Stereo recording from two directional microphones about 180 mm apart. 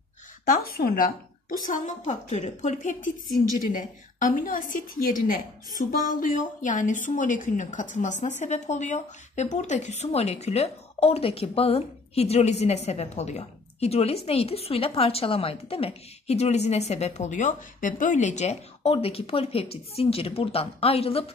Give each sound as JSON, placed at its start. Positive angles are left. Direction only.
{"t": 0.5, "sound": "a woman's voice", "side_deg": 55}